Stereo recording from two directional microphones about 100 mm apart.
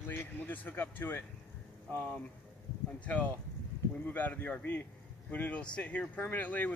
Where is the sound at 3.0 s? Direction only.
15° left (ahead or behind).